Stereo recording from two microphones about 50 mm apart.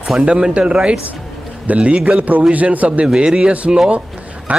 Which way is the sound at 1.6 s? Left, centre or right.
Right.